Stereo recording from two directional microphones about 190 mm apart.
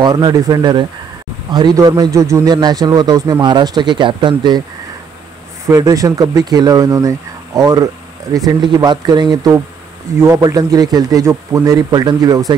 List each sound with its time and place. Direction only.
0.0 s a man's voice: 20° right (ahead or behind)
5.7 s a man's voice: 15° right (ahead or behind)